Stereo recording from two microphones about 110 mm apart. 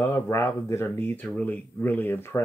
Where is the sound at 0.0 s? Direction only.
20° left (ahead or behind).